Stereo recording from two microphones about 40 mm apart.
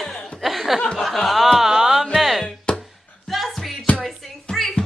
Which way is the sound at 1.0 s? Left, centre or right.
Centre.